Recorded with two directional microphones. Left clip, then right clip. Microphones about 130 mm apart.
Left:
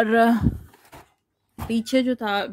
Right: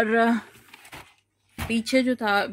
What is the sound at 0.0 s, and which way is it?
Speech, 45° left (ahead or behind).